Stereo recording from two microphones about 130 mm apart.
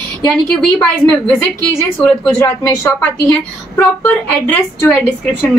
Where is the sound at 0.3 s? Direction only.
10° left (ahead or behind).